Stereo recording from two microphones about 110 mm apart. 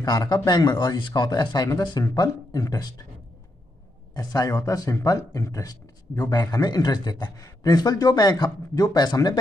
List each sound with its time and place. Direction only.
0.0 s speech: 40° left (ahead or behind)
4.1 s speech: 35° left (ahead or behind)